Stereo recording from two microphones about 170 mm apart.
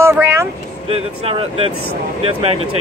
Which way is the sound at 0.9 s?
35° right (ahead or behind).